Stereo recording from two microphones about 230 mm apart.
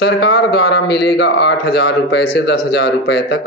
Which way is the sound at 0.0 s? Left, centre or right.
Left.